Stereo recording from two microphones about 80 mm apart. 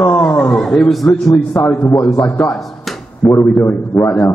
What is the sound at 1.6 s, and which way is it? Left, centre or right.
Speech, centre.